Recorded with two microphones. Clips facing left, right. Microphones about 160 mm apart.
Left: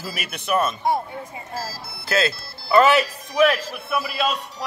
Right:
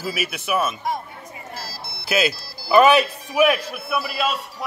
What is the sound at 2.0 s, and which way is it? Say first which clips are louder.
Speech: right 1 dB; 15° right (ahead or behind).